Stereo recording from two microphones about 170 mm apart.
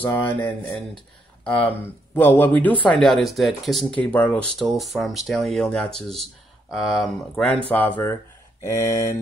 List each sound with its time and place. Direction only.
0.0 s speech: 10° left (ahead or behind)
2.1 s speech: 10° left (ahead or behind)